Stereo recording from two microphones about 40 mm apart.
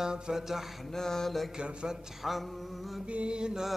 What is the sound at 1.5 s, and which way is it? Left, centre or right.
Mantra, right.